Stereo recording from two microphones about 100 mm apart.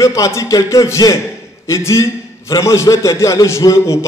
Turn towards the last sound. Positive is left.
turn(degrees=30)  # may be behind; listen again after turning